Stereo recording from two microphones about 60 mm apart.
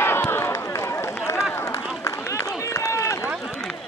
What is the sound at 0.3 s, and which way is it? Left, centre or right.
Run, left.